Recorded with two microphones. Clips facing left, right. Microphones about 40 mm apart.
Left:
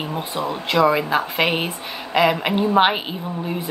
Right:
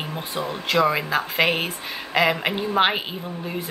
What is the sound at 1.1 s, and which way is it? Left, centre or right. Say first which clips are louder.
Speech: left 1 dB; centre.